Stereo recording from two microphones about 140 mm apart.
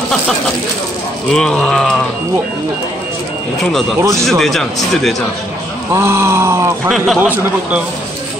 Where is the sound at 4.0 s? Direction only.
20° right (ahead or behind).